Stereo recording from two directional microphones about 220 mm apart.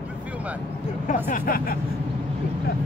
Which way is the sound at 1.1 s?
40° left (ahead or behind).